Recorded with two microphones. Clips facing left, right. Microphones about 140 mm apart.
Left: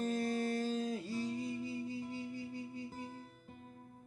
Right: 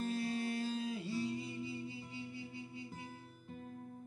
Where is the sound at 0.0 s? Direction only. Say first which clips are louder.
Left 2 dB; 45° left (ahead or behind).